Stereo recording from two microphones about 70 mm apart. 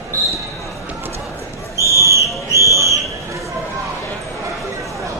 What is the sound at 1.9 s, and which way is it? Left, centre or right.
Basketball bounce, right.